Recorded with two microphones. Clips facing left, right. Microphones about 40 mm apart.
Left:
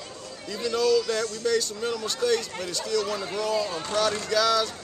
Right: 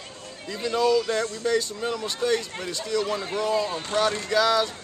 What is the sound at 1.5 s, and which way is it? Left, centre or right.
Speech, centre.